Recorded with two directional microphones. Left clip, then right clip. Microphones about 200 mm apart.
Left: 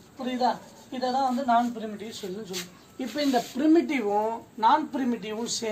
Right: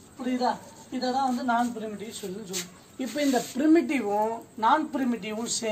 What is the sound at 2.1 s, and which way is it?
Speech, 5° right (ahead or behind).